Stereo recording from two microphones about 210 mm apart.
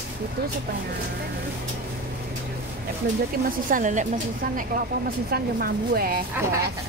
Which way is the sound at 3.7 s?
35° right (ahead or behind).